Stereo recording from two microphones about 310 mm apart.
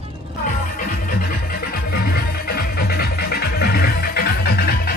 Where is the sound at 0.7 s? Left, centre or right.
Left.